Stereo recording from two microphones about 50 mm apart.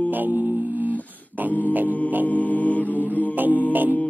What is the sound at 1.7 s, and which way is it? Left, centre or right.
Music, right.